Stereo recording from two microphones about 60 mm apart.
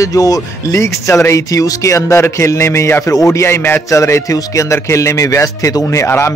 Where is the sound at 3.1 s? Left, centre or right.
Left.